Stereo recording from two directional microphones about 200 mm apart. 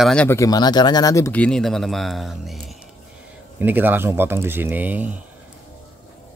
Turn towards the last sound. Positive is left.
turn(degrees=-10)  # may be behind; listen again after turning